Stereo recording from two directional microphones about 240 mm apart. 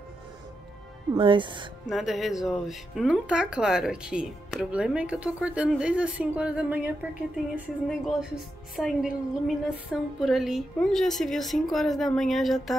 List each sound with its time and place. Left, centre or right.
1.1 s speech: right
1.9 s speech: centre